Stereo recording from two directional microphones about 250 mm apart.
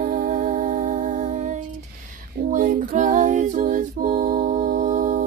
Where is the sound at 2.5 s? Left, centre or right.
Right.